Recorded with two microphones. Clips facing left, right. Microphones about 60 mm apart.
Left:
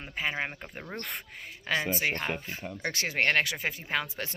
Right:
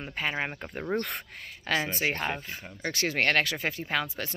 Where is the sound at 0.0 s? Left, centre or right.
Centre.